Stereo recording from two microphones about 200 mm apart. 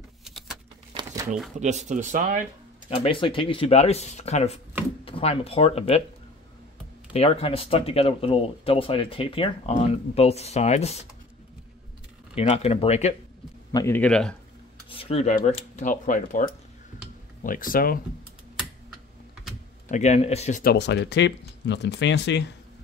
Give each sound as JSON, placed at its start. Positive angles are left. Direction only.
{"t": 0.2, "sound": "a sound", "side_deg": 0}
{"t": 1.6, "sound": "speech", "side_deg": -35}
{"t": 3.0, "sound": "speech", "side_deg": 25}
{"t": 7.1, "sound": "speech", "side_deg": 30}
{"t": 12.4, "sound": "speech", "side_deg": 30}
{"t": 13.7, "sound": "a man's voice", "side_deg": 15}
{"t": 14.9, "sound": "speech", "side_deg": 30}
{"t": 19.9, "sound": "speech", "side_deg": 35}
{"t": 20.6, "sound": "speech", "side_deg": 55}